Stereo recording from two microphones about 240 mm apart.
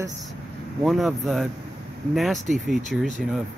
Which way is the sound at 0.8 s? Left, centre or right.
Centre.